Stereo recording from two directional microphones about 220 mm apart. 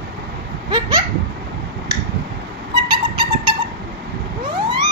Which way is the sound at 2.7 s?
20° right (ahead or behind).